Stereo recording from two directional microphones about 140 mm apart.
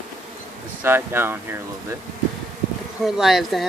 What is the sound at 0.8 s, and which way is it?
Speech, 15° right (ahead or behind).